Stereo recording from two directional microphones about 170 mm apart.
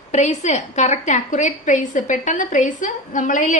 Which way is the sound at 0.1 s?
40° left (ahead or behind).